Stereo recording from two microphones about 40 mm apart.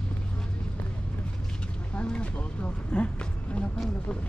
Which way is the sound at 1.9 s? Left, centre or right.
Left.